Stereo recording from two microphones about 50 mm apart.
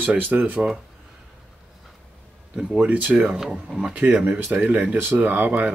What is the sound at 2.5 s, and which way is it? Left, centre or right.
Speech, centre.